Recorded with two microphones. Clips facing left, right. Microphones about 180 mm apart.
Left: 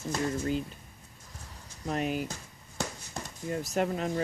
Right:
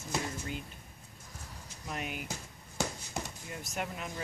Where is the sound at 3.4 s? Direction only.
35° left (ahead or behind).